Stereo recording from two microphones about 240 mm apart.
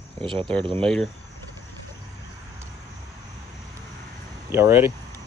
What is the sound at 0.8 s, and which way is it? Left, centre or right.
Speech, centre.